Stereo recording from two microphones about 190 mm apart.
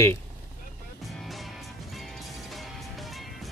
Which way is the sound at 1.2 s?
Centre (ahead or behind).